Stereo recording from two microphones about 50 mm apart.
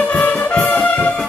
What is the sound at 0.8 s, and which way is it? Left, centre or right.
Music, left.